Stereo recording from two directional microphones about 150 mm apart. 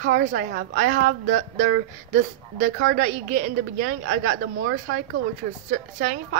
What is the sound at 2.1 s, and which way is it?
A woman's voice, 65° right (ahead or behind).